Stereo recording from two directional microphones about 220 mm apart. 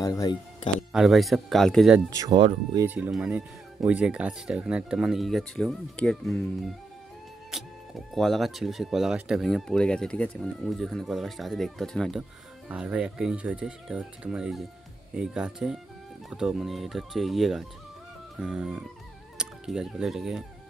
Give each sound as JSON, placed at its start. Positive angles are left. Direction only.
{"t": 0.0, "sound": "speech", "side_deg": 15}
{"t": 0.9, "sound": "speech", "side_deg": 0}
{"t": 2.0, "sound": "speech", "side_deg": -15}